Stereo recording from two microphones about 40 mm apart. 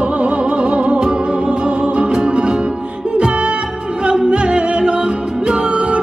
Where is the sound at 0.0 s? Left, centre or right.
Right.